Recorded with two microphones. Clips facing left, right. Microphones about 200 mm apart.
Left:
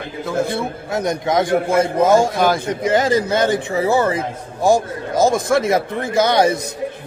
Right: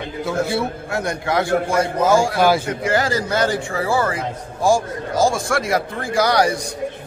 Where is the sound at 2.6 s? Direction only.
20° left (ahead or behind).